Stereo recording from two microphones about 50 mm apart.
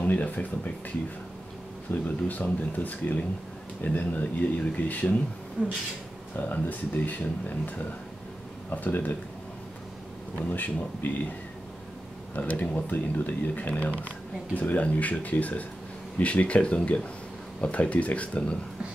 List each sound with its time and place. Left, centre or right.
0.0 s speech: left
1.9 s speech: left
2.2 s speech: left
5.6 s a sound: right
6.3 s speech: left
10.5 s speech: left
12.4 s speech: left